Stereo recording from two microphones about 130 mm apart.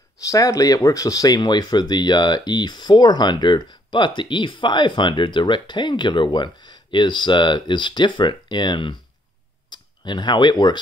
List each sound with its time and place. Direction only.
0.3 s speech: 25° left (ahead or behind)